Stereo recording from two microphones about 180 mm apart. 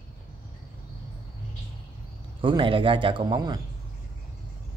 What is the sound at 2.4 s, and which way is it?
Speech, 25° right (ahead or behind).